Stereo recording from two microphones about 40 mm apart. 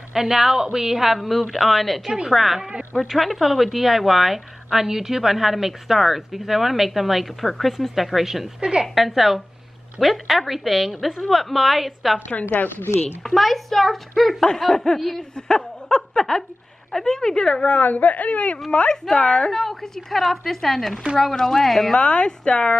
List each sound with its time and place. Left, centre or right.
0.1 s a woman's voice: centre
8.5 s a woman's voice: right
8.9 s a woman's voice: centre
12.3 s speech: left
12.5 s a woman's voice: left
13.2 s a woman's voice: centre
15.3 s a sound: centre
16.9 s a woman's voice: centre
17.7 s speech: left
19.6 s a woman's voice: centre
21.9 s speech: left